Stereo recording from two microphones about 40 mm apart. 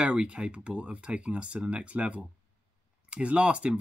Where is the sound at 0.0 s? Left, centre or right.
Right.